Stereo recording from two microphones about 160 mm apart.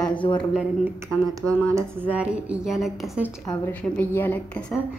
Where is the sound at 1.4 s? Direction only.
20° right (ahead or behind); by 3.3 s 5° right (ahead or behind).